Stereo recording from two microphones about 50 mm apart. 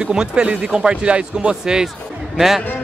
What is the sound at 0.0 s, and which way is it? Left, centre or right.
A man's voice, centre.